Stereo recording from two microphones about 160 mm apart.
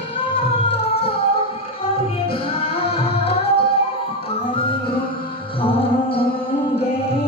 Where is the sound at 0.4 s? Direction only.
35° left (ahead or behind).